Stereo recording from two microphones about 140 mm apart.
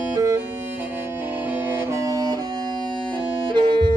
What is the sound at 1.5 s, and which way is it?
Music, 15° right (ahead or behind).